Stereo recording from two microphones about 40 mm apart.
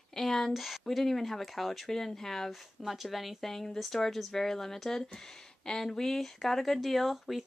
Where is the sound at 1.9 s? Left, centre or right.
Centre.